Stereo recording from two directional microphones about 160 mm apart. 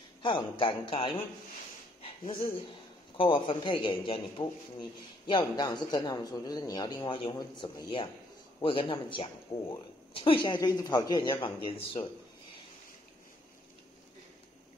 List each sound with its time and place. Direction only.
0.2 s a man's voice: 30° left (ahead or behind)
2.0 s a sound: 35° left (ahead or behind)
3.2 s a man's voice: 30° left (ahead or behind)